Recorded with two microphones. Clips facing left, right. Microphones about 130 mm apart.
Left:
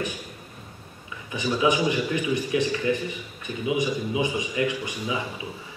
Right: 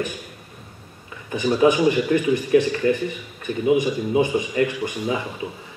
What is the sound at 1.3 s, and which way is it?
Speech, 50° right (ahead or behind).